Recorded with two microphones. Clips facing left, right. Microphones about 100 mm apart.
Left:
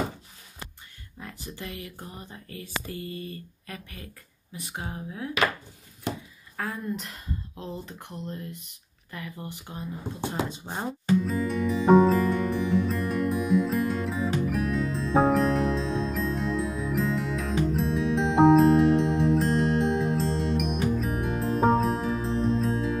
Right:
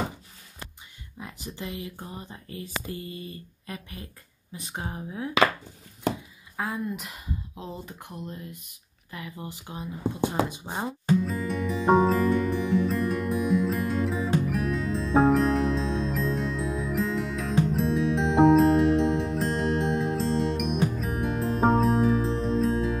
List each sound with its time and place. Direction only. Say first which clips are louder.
1.2 s speech: right 2 dB; 20° right (ahead or behind)
6.5 s speech: right 1 dB; 15° right (ahead or behind)
10.5 s music: right 1 dB; 15° right (ahead or behind)